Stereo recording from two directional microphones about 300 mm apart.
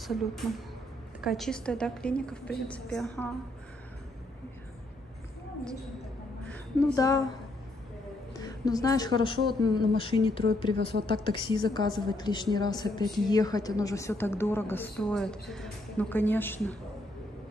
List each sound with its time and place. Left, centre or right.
0.0 s a woman's voice: centre
6.5 s a woman's voice: centre
8.3 s a woman's voice: centre